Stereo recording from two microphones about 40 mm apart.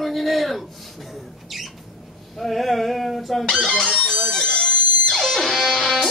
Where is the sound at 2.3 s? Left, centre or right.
Centre.